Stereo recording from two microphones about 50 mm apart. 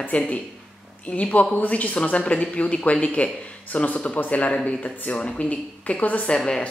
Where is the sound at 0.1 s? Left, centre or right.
Left.